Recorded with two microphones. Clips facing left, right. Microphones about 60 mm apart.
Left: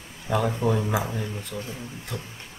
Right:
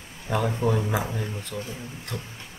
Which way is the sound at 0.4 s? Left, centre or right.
Centre.